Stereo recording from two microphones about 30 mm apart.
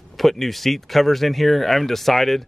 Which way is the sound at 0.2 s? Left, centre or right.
Centre.